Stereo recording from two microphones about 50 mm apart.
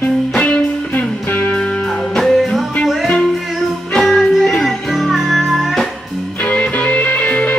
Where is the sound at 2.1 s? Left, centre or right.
Centre.